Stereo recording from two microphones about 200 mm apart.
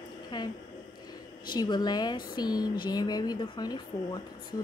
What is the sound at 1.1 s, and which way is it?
A woman's voice, 20° left (ahead or behind).